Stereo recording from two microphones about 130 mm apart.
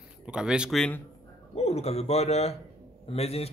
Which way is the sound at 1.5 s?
55° left (ahead or behind).